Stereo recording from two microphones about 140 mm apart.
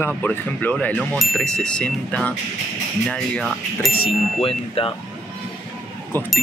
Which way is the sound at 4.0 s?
40° left (ahead or behind).